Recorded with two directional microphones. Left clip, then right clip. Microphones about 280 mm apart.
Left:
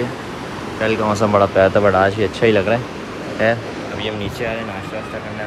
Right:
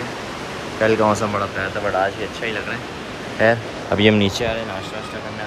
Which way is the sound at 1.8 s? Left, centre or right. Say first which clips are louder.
Left 6 dB; left.